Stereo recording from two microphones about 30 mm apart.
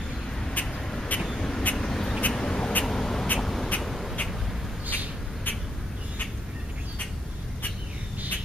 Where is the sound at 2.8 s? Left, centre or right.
Centre.